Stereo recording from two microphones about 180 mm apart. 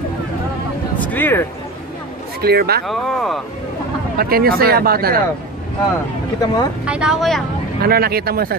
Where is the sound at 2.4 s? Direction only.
60° right (ahead or behind).